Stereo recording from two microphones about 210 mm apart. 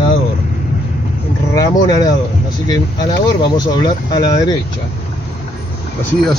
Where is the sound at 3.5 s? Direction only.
20° left (ahead or behind).